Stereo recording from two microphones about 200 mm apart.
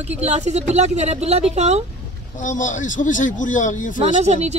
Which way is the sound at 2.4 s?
40° left (ahead or behind).